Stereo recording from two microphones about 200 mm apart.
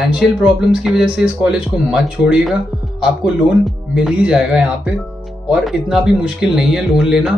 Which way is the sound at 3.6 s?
5° right (ahead or behind).